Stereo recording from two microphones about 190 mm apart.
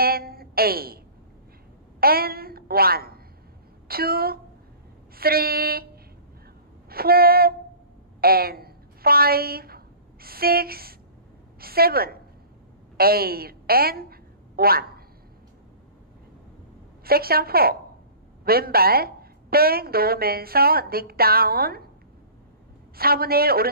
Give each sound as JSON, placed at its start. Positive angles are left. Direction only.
{"t": 0.0, "sound": "a sound", "side_deg": -50}
{"t": 2.0, "sound": "a woman's voice", "side_deg": -50}
{"t": 6.9, "sound": "a woman's voice", "side_deg": -55}
{"t": 17.0, "sound": "a woman's voice", "side_deg": -55}
{"t": 22.9, "sound": "a woman's voice", "side_deg": -50}